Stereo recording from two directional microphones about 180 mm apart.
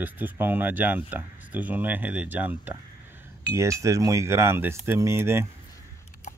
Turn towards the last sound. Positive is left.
turn(degrees=-15)  # may be behind; listen again after turning